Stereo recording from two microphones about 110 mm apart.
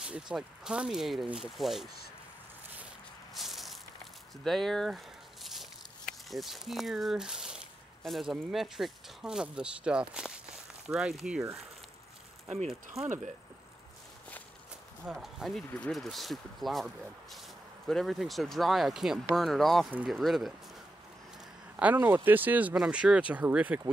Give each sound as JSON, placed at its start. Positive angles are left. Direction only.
{"t": 0.0, "sound": "speech", "side_deg": -5}
{"t": 3.3, "sound": "walk", "side_deg": 0}
{"t": 4.5, "sound": "a sound", "side_deg": 5}
{"t": 8.0, "sound": "speech", "side_deg": 0}
{"t": 12.6, "sound": "speech", "side_deg": -5}
{"t": 15.0, "sound": "speech", "side_deg": 0}
{"t": 21.9, "sound": "speech", "side_deg": -20}